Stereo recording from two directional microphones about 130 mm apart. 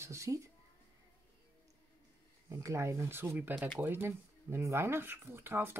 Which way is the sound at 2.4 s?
20° right (ahead or behind).